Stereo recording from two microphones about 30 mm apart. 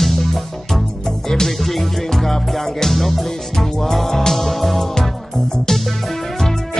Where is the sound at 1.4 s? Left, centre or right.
Centre.